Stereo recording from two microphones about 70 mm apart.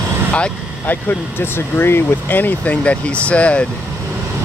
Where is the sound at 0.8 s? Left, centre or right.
Left.